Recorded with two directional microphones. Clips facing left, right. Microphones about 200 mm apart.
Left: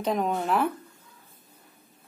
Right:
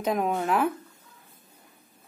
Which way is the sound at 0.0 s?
5° right (ahead or behind).